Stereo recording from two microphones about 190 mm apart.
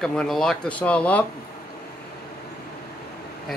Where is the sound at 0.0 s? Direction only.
5° left (ahead or behind).